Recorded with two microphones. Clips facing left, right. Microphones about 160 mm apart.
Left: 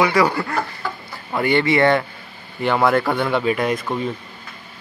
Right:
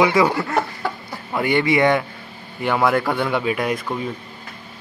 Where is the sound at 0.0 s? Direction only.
20° right (ahead or behind).